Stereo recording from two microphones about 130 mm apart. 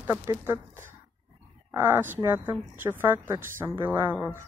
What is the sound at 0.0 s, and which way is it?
Speech, 20° right (ahead or behind).